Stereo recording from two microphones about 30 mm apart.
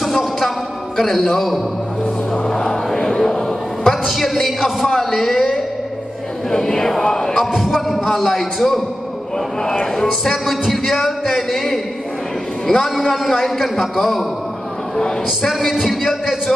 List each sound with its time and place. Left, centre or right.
0.1 s music: centre
0.9 s speech: centre
2.3 s music: centre
3.3 s a sound: centre
4.1 s speech: centre
6.5 s chant: centre
7.1 s music: centre
7.3 s speech: centre
9.7 s chant: centre
10.2 s speech: centre
15.7 s speech: centre